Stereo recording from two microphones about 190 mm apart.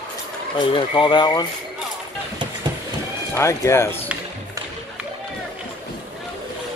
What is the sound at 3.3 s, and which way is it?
Speech, 15° left (ahead or behind).